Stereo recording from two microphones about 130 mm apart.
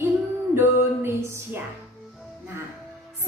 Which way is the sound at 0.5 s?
20° right (ahead or behind).